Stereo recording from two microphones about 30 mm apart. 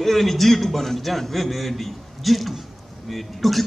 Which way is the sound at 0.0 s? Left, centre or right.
Centre.